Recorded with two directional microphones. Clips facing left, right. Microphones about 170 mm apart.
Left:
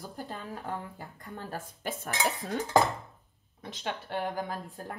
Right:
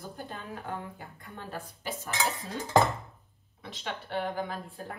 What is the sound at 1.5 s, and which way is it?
Speech, 50° left (ahead or behind).